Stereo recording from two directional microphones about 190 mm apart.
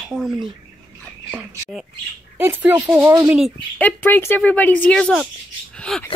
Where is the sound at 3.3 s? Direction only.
5° left (ahead or behind).